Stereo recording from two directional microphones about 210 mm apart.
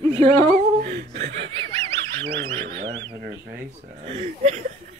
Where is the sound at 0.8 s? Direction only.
50° right (ahead or behind).